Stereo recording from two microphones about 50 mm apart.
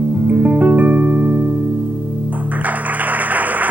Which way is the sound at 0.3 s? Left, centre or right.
Right.